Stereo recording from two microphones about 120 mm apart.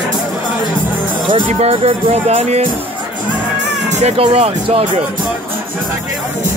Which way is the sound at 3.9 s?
65° right (ahead or behind).